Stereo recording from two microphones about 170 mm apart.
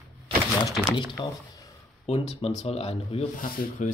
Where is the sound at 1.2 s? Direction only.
30° left (ahead or behind).